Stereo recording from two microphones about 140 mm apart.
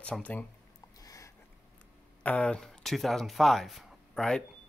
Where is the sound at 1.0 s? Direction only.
25° left (ahead or behind).